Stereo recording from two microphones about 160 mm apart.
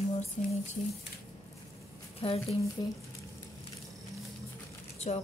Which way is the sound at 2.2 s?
35° left (ahead or behind).